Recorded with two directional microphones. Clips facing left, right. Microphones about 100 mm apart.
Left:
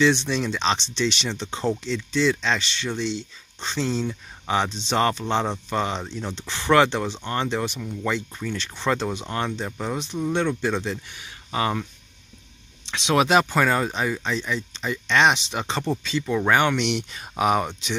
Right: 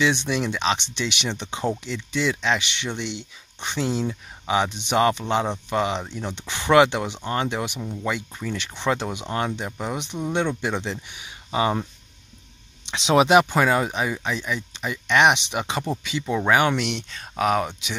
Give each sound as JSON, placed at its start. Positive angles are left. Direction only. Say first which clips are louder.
{"t": 0.0, "sound": "speech", "louder": "left 2 dB", "side_deg": -15}
{"t": 8.0, "sound": "speech", "louder": "left 2 dB", "side_deg": -10}
{"t": 12.9, "sound": "speech", "louder": "right 3 dB", "side_deg": -20}